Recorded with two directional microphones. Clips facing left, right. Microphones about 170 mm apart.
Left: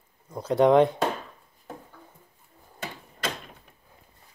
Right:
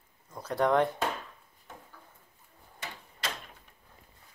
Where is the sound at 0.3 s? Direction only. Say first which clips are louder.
Left 7 dB; 20° left (ahead or behind).